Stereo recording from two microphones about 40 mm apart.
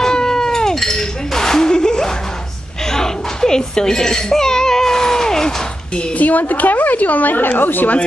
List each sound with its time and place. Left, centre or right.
0.0 s cat: centre
2.9 s a sound: centre
5.9 s a woman's voice: left